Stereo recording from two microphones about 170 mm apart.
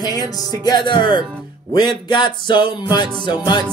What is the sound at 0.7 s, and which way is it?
Music, 25° left (ahead or behind).